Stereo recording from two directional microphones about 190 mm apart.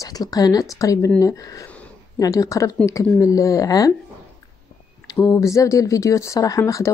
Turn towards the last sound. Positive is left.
turn(degrees=15)  # may be behind; listen again after turning